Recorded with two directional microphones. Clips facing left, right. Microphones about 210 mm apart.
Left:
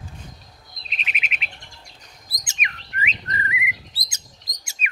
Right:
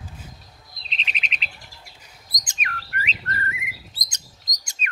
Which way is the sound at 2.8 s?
5° right (ahead or behind).